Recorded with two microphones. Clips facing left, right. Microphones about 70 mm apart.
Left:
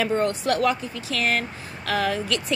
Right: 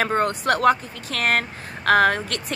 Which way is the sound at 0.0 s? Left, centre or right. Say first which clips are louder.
Right 1 dB; right.